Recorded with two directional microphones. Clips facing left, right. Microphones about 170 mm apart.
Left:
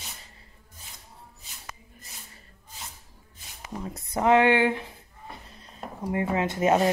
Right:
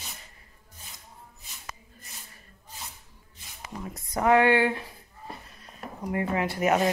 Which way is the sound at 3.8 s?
25° left (ahead or behind).